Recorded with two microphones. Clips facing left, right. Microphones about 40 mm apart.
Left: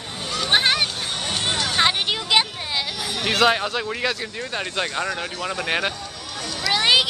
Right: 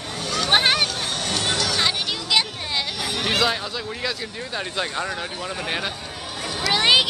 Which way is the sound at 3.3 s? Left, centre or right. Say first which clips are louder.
Left 7 dB; left.